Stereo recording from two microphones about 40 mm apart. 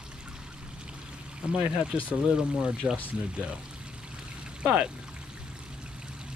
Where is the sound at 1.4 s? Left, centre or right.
Right.